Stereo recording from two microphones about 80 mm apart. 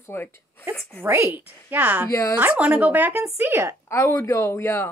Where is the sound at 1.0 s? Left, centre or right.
Right.